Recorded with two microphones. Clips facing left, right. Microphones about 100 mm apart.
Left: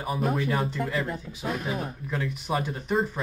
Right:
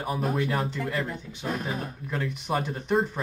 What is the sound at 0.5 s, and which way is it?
Speech, centre (ahead or behind).